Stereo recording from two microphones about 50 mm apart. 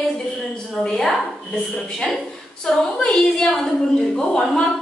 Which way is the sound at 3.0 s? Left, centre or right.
Centre.